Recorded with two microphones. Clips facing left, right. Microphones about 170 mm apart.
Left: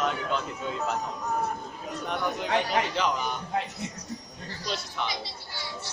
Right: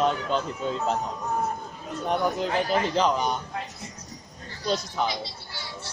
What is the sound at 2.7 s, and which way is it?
Speech, 35° right (ahead or behind).